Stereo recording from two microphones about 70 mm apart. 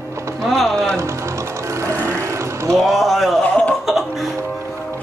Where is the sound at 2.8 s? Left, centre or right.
Centre.